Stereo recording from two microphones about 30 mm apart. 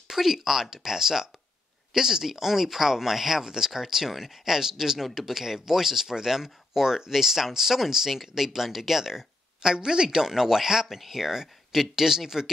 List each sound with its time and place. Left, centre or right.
0.1 s speech: centre
9.8 s speech: right